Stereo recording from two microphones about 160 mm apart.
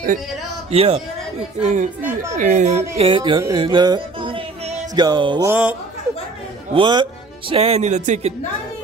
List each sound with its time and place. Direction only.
0.7 s a man's voice: 40° right (ahead or behind)
3.1 s music: 30° right (ahead or behind)
5.5 s speech: 10° right (ahead or behind)
6.7 s speech: 30° right (ahead or behind)